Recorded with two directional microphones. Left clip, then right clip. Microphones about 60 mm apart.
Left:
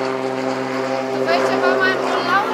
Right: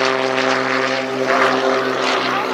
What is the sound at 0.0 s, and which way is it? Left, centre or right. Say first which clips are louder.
Vehicle: right 5 dB; left.